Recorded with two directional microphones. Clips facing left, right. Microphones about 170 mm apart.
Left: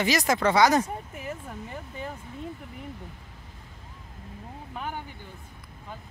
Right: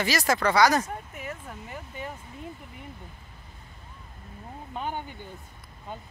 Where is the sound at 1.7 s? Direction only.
5° right (ahead or behind).